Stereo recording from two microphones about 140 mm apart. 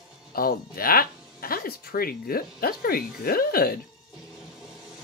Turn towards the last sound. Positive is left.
turn(degrees=90)